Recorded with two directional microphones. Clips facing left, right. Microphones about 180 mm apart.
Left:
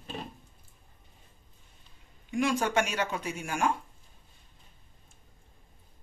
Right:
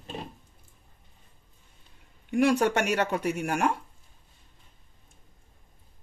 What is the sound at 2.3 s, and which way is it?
Speech, 65° right (ahead or behind).